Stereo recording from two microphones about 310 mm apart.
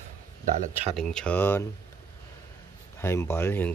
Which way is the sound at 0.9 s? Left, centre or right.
Centre.